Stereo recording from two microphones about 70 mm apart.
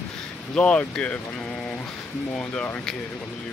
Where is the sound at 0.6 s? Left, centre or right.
Centre.